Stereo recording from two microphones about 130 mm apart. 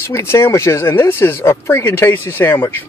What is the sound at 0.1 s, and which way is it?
Speech, 20° left (ahead or behind).